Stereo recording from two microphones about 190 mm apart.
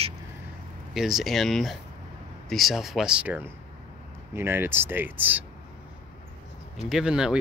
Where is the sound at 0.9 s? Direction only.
Centre (ahead or behind).